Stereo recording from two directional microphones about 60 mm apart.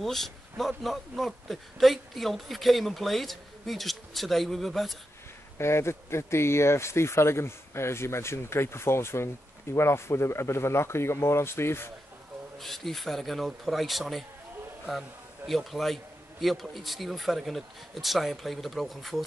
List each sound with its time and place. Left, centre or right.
0.0 s a man's voice: centre
5.6 s speech: left
12.5 s a man's voice: centre